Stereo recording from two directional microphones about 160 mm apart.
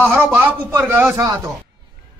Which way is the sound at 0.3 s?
10° right (ahead or behind).